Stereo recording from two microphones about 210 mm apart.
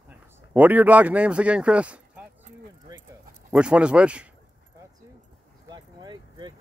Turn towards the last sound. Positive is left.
turn(degrees=-20)  # may be behind; listen again after turning